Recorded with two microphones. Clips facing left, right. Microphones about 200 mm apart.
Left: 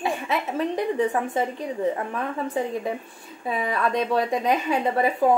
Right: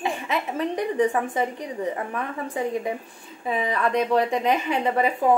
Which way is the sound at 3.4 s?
20° right (ahead or behind).